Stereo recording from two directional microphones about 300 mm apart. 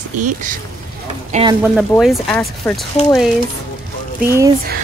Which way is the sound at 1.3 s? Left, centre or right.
Centre.